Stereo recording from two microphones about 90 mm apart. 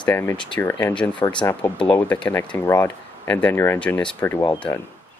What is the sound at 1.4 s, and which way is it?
Speech, 35° left (ahead or behind).